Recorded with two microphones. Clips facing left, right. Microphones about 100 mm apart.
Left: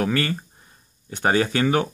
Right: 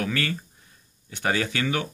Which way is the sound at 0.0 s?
30° left (ahead or behind).